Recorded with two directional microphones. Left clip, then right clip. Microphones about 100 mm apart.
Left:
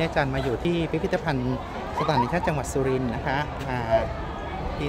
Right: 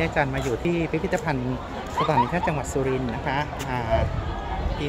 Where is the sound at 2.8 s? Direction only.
5° left (ahead or behind).